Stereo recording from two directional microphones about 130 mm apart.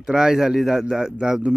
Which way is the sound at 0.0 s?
5° right (ahead or behind).